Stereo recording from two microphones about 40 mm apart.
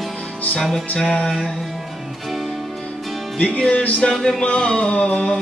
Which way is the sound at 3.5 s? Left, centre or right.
Left.